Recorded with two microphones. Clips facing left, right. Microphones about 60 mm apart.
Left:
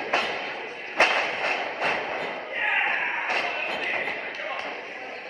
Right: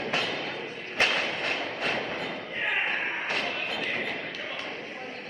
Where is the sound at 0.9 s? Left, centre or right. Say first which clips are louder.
Left 4 dB; left.